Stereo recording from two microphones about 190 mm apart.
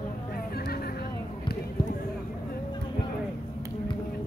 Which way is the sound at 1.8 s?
25° left (ahead or behind).